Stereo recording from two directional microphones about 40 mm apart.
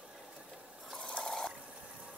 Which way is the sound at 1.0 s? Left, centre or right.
Centre.